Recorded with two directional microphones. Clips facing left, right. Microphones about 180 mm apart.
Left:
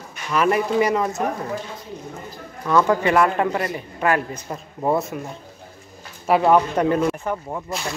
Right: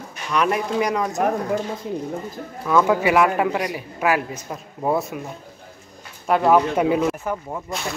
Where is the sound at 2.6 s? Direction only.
5° right (ahead or behind).